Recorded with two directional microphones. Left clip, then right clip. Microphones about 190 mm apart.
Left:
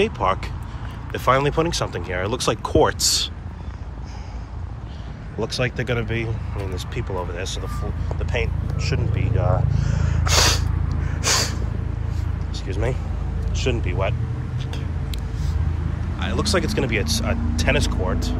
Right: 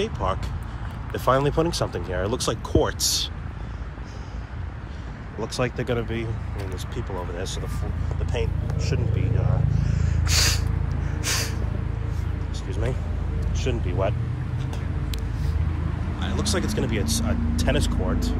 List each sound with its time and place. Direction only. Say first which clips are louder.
0.0 s speech: left 6 dB; 15° right (ahead or behind)
5.4 s speech: left 3 dB; 15° right (ahead or behind)
11.1 s snort: left 6 dB; 5° right (ahead or behind)
12.6 s speech: left 5 dB; 15° right (ahead or behind)
16.2 s speech: left 5 dB; 15° right (ahead or behind)